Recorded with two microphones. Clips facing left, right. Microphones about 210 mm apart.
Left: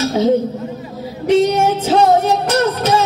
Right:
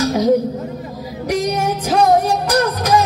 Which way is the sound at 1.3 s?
25° left (ahead or behind).